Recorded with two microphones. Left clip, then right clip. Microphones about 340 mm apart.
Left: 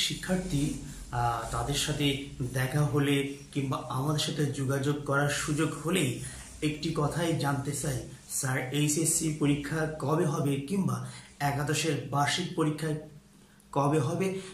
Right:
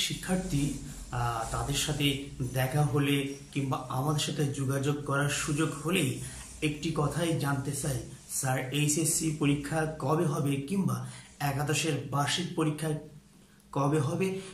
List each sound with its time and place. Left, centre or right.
1.1 s speech: centre